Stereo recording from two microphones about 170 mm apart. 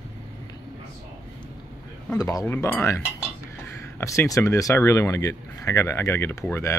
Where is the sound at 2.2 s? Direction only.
20° left (ahead or behind).